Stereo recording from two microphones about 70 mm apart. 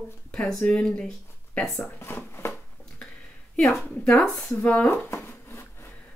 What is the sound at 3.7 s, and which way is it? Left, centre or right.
Speech, centre.